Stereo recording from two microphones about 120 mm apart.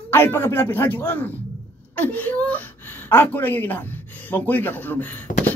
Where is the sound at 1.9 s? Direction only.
15° left (ahead or behind).